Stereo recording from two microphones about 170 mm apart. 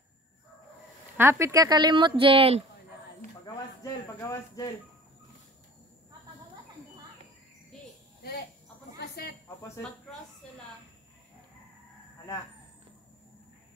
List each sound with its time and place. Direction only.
1.1 s speech: 15° right (ahead or behind); by 2.6 s 35° right (ahead or behind)
3.4 s speech: 20° left (ahead or behind)
9.0 s a sound: 70° left (ahead or behind)